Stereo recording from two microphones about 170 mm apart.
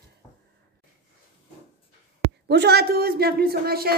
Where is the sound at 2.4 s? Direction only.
75° right (ahead or behind).